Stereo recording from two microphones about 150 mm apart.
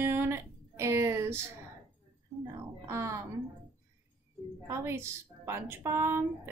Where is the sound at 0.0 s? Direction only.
15° right (ahead or behind).